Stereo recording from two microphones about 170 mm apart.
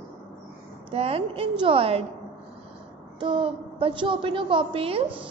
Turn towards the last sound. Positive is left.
turn(degrees=-35)  # may be behind; listen again after turning